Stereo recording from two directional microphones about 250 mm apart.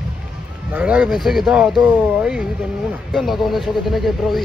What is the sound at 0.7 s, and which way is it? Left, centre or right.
Speech, centre.